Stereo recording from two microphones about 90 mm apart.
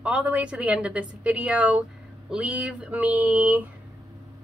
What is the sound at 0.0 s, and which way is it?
A woman's voice, 15° right (ahead or behind).